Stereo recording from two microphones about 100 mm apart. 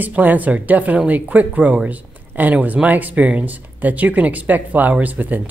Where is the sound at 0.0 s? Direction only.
15° right (ahead or behind).